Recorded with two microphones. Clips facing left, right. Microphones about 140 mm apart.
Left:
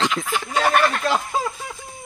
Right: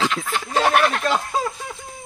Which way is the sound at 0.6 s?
25° right (ahead or behind).